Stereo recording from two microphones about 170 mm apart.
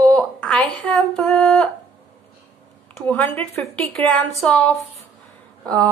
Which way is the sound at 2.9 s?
10° left (ahead or behind).